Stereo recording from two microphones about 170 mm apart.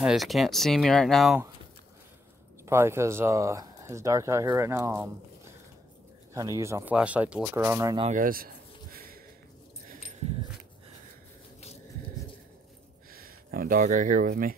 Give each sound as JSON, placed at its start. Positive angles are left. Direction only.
{"t": 0.0, "sound": "speech", "side_deg": 0}
{"t": 2.6, "sound": "speech", "side_deg": -15}
{"t": 6.3, "sound": "speech", "side_deg": -20}
{"t": 8.1, "sound": "speech", "side_deg": -55}
{"t": 8.9, "sound": "a sound", "side_deg": -60}
{"t": 13.1, "sound": "speech", "side_deg": -60}